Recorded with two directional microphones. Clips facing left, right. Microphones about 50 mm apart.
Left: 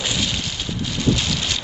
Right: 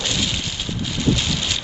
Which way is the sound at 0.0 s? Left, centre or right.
Centre.